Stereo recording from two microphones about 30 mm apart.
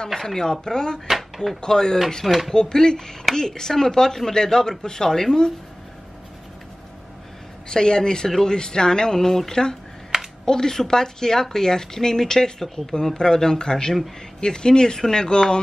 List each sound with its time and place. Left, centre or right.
0.1 s speech: centre
0.4 s speech: left
1.0 s a sound: centre
1.6 s speech: left
2.2 s speech: centre
2.5 s speech: left
7.7 s speech: left